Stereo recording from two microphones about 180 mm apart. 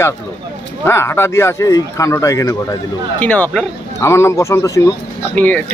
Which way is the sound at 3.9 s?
15° left (ahead or behind).